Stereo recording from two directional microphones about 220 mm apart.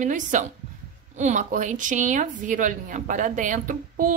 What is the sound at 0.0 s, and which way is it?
A woman's voice, 35° right (ahead or behind).